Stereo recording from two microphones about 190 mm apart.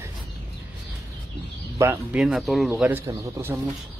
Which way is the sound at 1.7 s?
15° right (ahead or behind).